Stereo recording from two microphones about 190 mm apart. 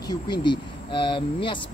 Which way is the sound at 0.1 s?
25° left (ahead or behind).